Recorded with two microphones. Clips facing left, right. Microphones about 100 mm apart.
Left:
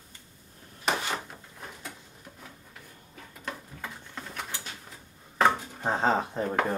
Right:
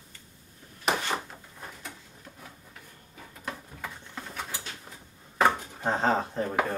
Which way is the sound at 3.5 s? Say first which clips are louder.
Even; 5° right (ahead or behind).